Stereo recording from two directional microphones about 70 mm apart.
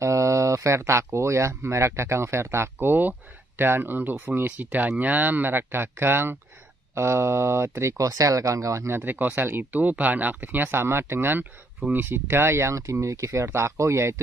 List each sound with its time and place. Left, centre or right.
0.0 s speech: right
8.1 s speech: right
9.0 s speech: right